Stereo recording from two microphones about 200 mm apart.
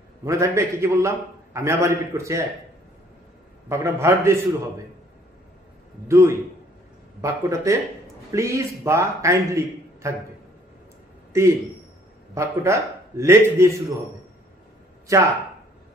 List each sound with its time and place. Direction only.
0.2 s a man's voice: 15° right (ahead or behind)
3.6 s a man's voice: 15° right (ahead or behind)
6.0 s a man's voice: 15° right (ahead or behind)
11.3 s a man's voice: 15° right (ahead or behind)
15.1 s a man's voice: 15° right (ahead or behind)